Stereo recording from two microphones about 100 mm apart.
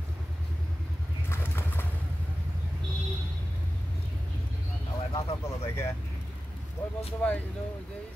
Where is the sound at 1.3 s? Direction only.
20° left (ahead or behind).